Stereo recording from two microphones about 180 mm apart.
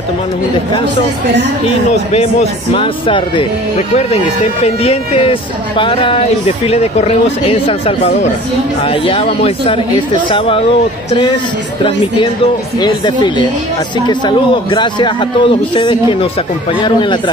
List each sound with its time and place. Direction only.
2.7 s speech: 30° left (ahead or behind)
12.7 s speech: 25° left (ahead or behind)